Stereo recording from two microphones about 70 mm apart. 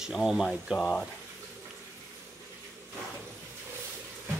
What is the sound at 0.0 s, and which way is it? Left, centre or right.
Speech, centre.